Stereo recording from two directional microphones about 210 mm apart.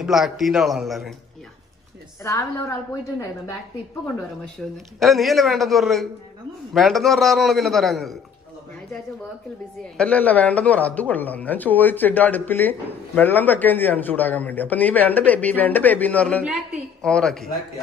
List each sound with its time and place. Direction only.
0.0 s a man's voice: centre (ahead or behind)
2.9 s speech: 15° left (ahead or behind)
5.0 s a man's voice: centre (ahead or behind)
9.9 s a man's voice: 5° left (ahead or behind)